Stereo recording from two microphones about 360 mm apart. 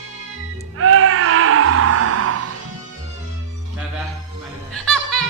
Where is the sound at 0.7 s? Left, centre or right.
Right.